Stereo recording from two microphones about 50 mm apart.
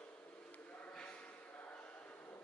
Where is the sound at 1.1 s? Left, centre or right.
Left.